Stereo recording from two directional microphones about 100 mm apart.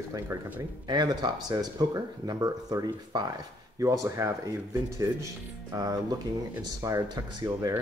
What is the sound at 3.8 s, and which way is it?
Speech, 30° right (ahead or behind).